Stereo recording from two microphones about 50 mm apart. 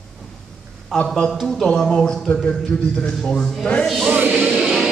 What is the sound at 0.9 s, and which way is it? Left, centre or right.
Speech, centre.